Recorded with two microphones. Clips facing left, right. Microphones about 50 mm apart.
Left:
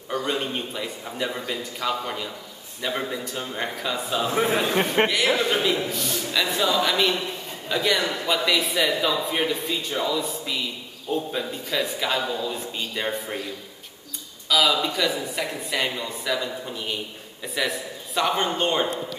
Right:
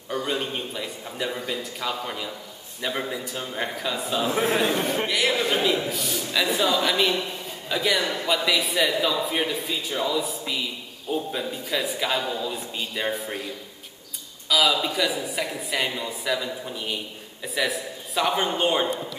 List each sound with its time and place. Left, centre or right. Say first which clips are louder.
0.1 s a man's voice: left 1 dB; centre
5.0 s a man's voice: left 6 dB; left
5.4 s a man's voice: even; centre
14.5 s a man's voice: left 1 dB; centre